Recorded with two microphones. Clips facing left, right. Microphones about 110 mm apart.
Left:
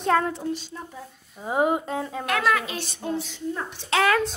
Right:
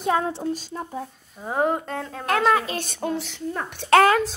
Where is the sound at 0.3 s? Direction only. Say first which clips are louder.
Right 2 dB; 35° right (ahead or behind).